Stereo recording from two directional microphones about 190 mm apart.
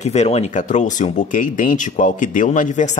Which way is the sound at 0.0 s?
35° left (ahead or behind).